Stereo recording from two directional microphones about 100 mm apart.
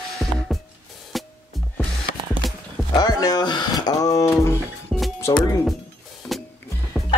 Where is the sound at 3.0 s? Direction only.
40° left (ahead or behind).